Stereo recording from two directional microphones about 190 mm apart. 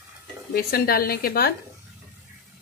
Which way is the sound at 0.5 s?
50° left (ahead or behind).